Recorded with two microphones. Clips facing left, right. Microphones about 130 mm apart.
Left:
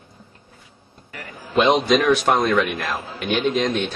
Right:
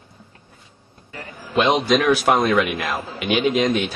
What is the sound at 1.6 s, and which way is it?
A man's voice, centre (ahead or behind).